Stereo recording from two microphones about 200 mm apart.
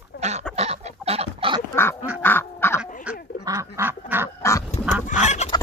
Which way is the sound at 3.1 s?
5° right (ahead or behind).